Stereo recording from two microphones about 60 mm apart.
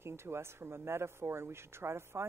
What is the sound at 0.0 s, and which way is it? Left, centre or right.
Speech, right.